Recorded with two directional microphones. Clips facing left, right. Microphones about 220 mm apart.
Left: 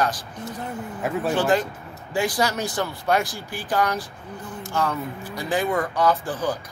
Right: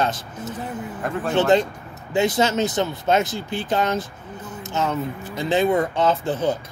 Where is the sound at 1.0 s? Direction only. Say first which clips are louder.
Left 1 dB; 5° left (ahead or behind).